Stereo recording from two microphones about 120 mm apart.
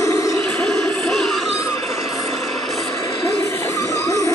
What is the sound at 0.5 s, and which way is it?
Music, 5° left (ahead or behind).